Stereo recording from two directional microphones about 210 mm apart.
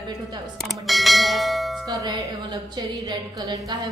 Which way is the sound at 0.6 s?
Centre (ahead or behind).